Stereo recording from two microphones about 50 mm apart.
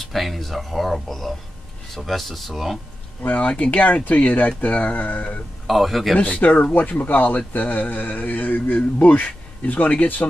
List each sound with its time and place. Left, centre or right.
0.0 s speech: centre
3.2 s speech: left
5.7 s speech: centre
6.1 s speech: left